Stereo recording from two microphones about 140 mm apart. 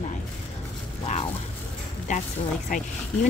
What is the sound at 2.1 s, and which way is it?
Speech, 60° left (ahead or behind).